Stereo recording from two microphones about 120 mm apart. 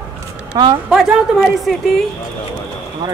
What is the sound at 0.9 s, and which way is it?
Speech, 5° right (ahead or behind).